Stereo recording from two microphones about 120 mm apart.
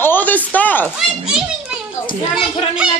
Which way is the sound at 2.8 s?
10° right (ahead or behind).